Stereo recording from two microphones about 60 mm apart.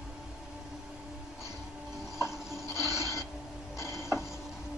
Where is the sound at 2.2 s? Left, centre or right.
Left.